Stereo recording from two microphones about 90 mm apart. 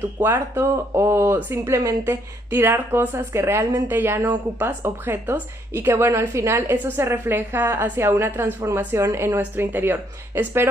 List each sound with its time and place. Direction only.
0.2 s speech: 30° right (ahead or behind)